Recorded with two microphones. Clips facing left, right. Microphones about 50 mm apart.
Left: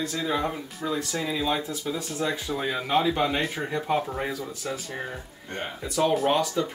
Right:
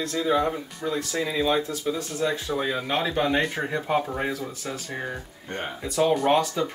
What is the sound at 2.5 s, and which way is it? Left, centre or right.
Speech, centre.